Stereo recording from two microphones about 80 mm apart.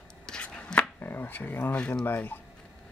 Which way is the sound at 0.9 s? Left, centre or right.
Left.